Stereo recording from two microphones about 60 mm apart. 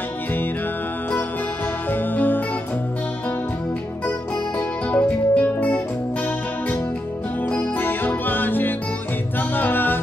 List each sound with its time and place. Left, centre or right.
1.9 s music: left
4.6 s music: left
7.5 s music: left